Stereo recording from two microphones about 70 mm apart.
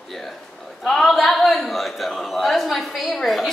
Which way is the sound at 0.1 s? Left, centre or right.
Centre.